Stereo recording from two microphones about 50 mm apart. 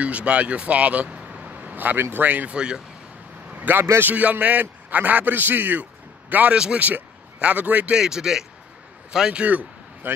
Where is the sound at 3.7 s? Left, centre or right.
Right.